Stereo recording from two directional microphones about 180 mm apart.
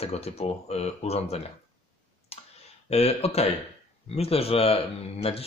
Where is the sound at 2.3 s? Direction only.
35° left (ahead or behind).